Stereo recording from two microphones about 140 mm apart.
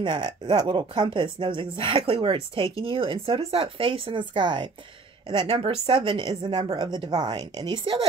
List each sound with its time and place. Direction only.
0.0 s speech: 30° right (ahead or behind)